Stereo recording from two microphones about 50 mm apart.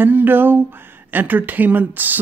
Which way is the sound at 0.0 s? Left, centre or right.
Right.